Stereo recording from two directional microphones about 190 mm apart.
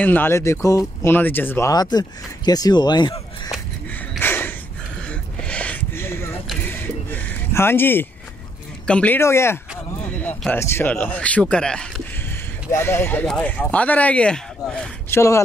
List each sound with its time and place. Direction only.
0.0 s speech: 10° left (ahead or behind)
4.2 s a sound: 10° left (ahead or behind)
6.6 s vehicle: 10° left (ahead or behind)
8.8 s speech: 5° left (ahead or behind)